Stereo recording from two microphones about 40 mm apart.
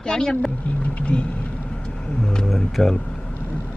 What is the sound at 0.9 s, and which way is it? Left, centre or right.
Speech, left.